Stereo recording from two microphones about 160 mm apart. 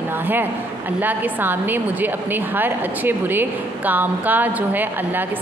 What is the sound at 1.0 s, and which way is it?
A woman's voice, 10° right (ahead or behind).